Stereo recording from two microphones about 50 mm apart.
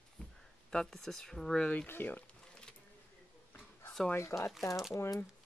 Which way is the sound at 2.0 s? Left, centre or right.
Left.